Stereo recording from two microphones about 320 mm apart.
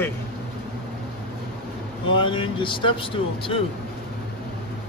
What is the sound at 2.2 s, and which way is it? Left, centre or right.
Speech, centre.